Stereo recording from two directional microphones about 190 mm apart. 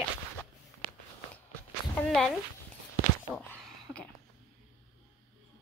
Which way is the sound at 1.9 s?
5° left (ahead or behind).